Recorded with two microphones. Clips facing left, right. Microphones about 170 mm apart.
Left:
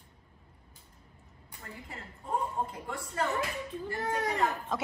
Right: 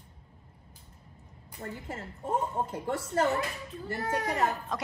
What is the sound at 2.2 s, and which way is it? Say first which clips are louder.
Speech: right 2 dB; 80° right.